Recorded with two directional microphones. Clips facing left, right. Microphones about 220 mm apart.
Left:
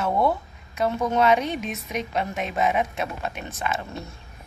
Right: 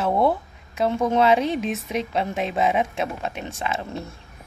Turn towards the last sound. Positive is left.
turn(degrees=-30)  # may be behind; listen again after turning